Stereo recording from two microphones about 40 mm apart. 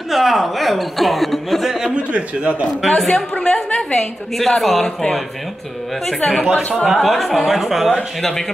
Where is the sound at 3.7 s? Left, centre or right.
Left.